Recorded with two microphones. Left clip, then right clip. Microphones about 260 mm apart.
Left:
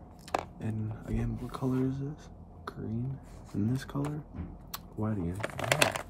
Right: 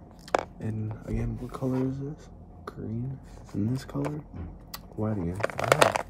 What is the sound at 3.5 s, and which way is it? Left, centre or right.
Speech, centre.